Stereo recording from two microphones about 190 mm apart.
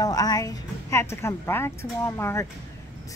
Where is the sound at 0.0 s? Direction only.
20° left (ahead or behind).